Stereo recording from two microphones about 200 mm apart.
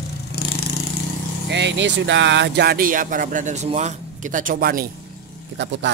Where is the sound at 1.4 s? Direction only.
60° right (ahead or behind).